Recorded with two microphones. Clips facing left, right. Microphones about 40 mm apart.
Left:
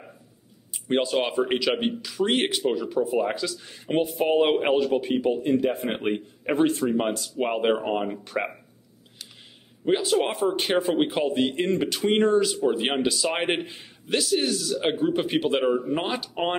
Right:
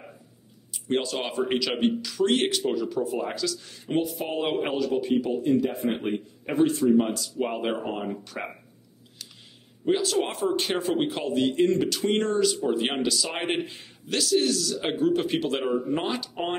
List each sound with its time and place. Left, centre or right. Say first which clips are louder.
0.7 s speech: left 4 dB; centre
9.8 s speech: left 2 dB; centre
10.3 s speech: left 3 dB; centre; by 11.8 s left
11.8 s speech: left 3 dB; centre
13.2 s speech: left 3 dB; left